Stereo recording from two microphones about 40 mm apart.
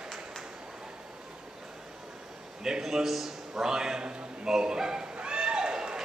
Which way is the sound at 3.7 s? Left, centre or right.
Centre.